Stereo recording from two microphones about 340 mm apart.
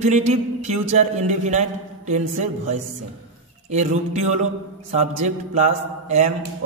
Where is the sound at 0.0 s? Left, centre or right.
Centre.